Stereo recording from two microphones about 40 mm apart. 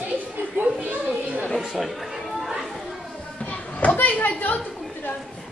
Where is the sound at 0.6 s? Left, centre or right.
Right.